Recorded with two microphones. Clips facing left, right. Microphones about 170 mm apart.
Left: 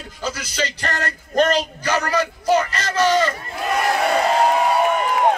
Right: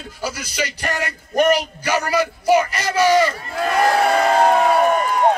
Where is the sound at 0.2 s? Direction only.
10° right (ahead or behind).